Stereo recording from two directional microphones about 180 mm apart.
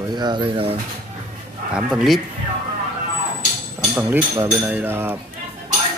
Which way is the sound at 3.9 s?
10° right (ahead or behind).